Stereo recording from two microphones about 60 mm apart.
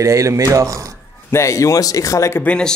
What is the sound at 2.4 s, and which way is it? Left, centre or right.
Speech, centre.